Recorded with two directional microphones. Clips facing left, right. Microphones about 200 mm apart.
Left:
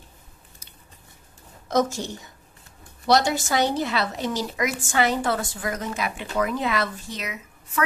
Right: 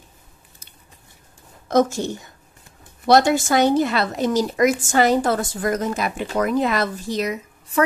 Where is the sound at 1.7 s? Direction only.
55° right (ahead or behind).